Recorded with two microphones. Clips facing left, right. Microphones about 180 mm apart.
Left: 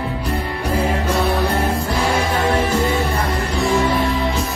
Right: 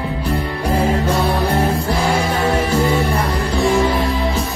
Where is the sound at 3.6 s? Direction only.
30° right (ahead or behind).